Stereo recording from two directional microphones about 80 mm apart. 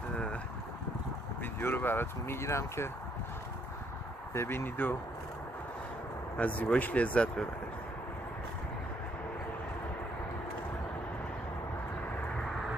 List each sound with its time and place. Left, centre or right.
0.1 s wind: centre
1.4 s speech: left
4.3 s speech: left
6.3 s speech: centre